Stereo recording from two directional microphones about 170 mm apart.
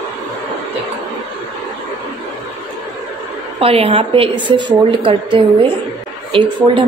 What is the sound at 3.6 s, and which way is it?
A woman's voice, 35° right (ahead or behind).